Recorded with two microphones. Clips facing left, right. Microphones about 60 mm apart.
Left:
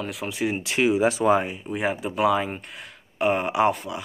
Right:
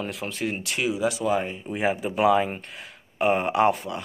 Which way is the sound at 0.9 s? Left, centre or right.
Left.